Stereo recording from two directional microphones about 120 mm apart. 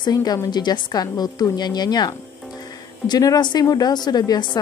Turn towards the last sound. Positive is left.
turn(degrees=35)  # may be behind; listen again after turning